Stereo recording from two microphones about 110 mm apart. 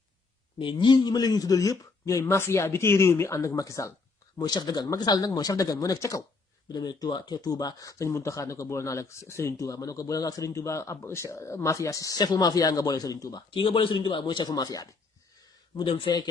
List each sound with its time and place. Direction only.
0.6 s speech: 45° left (ahead or behind)
13.6 s a man's voice: 50° left (ahead or behind); by 14.9 s 35° left (ahead or behind)
15.4 s a sound: 45° left (ahead or behind)